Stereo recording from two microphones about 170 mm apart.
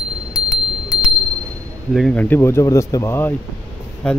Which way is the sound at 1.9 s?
Centre (ahead or behind).